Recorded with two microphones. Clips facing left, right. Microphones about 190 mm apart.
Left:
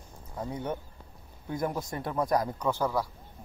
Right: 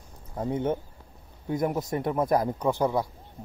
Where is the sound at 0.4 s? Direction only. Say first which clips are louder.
Right 7 dB; 25° right (ahead or behind).